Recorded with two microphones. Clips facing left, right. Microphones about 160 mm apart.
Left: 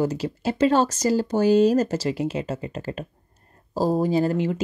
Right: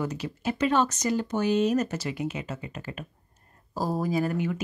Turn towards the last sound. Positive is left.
turn(degrees=30)  # may be behind; listen again after turning